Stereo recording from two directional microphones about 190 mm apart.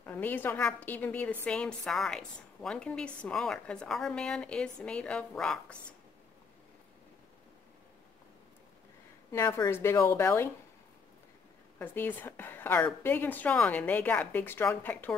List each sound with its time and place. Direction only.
0.0 s a woman's voice: 10° left (ahead or behind)
9.3 s a woman's voice: 15° left (ahead or behind)
11.8 s a woman's voice: 10° left (ahead or behind)